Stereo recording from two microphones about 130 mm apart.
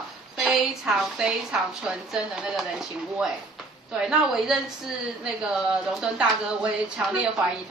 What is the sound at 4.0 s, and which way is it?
Speech, 5° right (ahead or behind).